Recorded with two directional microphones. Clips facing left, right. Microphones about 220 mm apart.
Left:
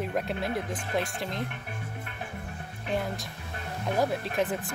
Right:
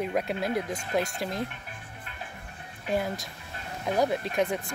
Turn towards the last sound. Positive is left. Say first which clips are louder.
# right 1 dB
turn(degrees=0)  # may be behind; listen again after turning